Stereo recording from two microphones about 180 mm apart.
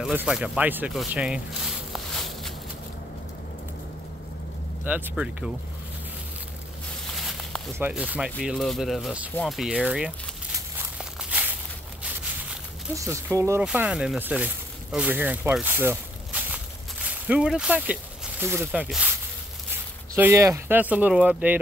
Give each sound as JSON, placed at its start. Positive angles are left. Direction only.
{"t": 0.0, "sound": "speech", "side_deg": -5}
{"t": 1.9, "sound": "a sound", "side_deg": 0}
{"t": 4.8, "sound": "speech", "side_deg": -10}
{"t": 7.2, "sound": "a sound", "side_deg": 0}
{"t": 7.8, "sound": "speech", "side_deg": -5}
{"t": 11.0, "sound": "walk", "side_deg": -10}
{"t": 12.9, "sound": "speech", "side_deg": -15}
{"t": 20.2, "sound": "speech", "side_deg": -15}